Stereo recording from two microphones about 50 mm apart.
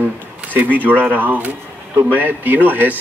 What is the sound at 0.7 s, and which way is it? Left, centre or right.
Speech, left.